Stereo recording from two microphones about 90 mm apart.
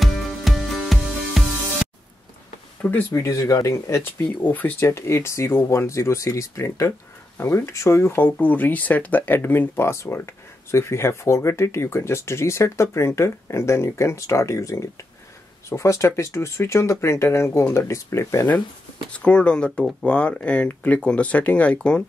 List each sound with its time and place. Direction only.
0.0 s music: centre (ahead or behind)
2.8 s speech: 20° left (ahead or behind)
3.3 s speech: 40° left (ahead or behind)
4.2 s speech: 20° left (ahead or behind)
19.1 s speech: 10° left (ahead or behind)